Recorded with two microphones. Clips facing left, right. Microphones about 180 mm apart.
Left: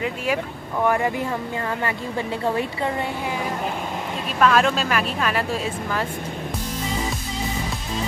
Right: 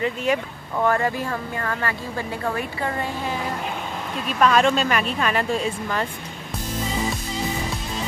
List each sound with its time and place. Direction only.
0.0 s speech: 5° left (ahead or behind); by 2.9 s 20° left (ahead or behind)
4.4 s a woman's voice: centre (ahead or behind)